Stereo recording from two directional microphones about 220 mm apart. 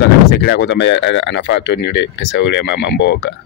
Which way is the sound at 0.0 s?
50° left (ahead or behind).